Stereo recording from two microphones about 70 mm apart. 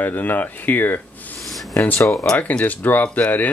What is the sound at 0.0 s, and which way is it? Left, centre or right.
Speech, left.